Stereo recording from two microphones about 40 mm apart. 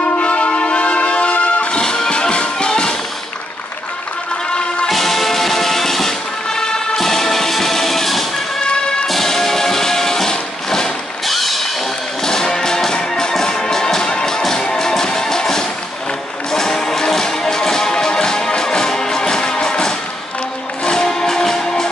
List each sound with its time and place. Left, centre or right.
0.2 s music: left
1.8 s music: centre
4.8 s music: centre
11.2 s music: centre
12.2 s music: centre